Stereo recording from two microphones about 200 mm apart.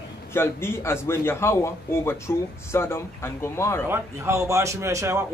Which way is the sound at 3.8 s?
10° right (ahead or behind).